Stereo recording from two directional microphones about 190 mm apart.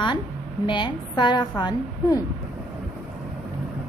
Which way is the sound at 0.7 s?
25° left (ahead or behind).